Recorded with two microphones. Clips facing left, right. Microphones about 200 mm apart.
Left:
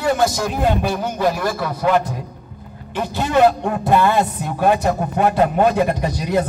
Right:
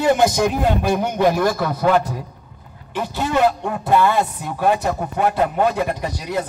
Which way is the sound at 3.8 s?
15° left (ahead or behind).